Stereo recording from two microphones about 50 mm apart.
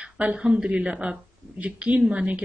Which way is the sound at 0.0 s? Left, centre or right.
Right.